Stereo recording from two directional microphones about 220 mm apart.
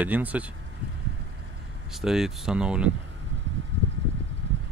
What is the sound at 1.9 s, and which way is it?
Speech, centre (ahead or behind).